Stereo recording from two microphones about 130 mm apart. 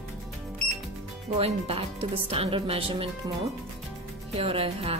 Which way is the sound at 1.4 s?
50° right (ahead or behind).